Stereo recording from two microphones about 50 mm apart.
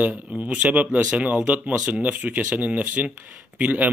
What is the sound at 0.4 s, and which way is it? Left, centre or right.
Speech, right.